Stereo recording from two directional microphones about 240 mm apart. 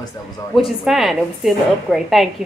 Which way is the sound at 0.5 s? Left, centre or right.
Centre.